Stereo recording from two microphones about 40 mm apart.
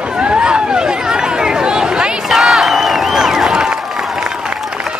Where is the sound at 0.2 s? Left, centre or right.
Right.